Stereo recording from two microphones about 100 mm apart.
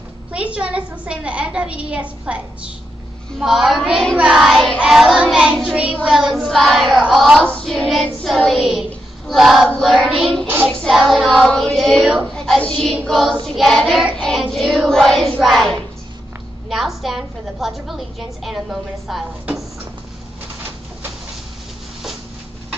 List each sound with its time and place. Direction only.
0.3 s a woman's voice: 10° right (ahead or behind)
3.3 s a woman's voice: centre (ahead or behind)
7.4 s hands: 10° left (ahead or behind)
9.3 s a woman's voice: centre (ahead or behind)
10.4 s child singing: 20° right (ahead or behind)
10.7 s a woman's voice: centre (ahead or behind)
14.1 s child singing: 5° left (ahead or behind)
14.5 s a woman's voice: centre (ahead or behind)